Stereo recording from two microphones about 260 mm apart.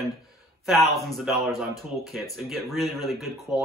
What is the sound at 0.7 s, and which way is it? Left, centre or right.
Speech, centre.